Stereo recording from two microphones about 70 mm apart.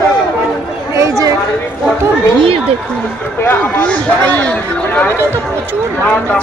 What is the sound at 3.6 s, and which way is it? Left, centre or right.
A man's voice, left.